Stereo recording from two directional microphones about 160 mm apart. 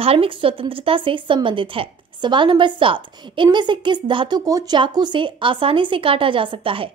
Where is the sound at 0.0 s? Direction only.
35° right (ahead or behind).